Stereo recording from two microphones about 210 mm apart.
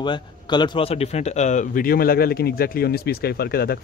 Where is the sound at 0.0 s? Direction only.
20° left (ahead or behind).